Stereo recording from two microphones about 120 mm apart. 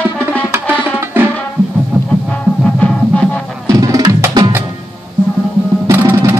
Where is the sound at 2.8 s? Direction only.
10° left (ahead or behind).